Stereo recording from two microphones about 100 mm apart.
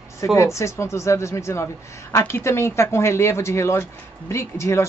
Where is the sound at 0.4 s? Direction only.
30° left (ahead or behind).